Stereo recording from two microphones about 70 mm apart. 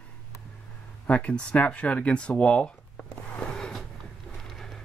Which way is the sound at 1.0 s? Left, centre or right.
Centre.